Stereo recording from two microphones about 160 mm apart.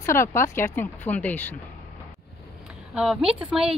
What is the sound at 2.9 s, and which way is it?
Speech, 5° right (ahead or behind).